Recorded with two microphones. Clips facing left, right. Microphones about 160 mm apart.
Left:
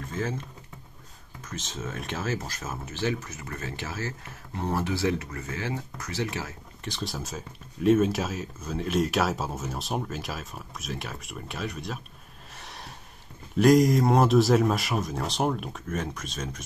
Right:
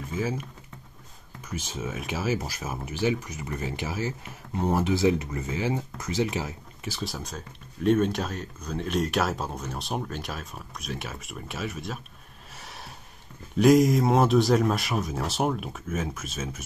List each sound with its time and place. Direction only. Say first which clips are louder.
0.0 s typing: right 2 dB; 10° right (ahead or behind)
1.5 s speech: right 2 dB; 10° right (ahead or behind)
6.8 s speech: even; 5° right (ahead or behind)
13.6 s speech: even; centre (ahead or behind)